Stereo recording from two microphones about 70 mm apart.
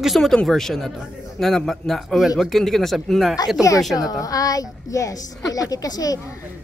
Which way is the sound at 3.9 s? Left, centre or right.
Left.